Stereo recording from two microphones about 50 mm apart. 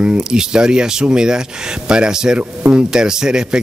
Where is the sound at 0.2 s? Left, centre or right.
Centre.